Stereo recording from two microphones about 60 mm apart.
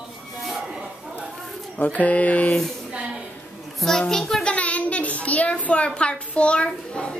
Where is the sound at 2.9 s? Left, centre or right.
Centre.